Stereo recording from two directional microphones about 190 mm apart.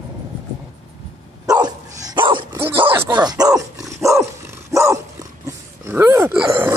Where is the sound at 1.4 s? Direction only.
20° right (ahead or behind).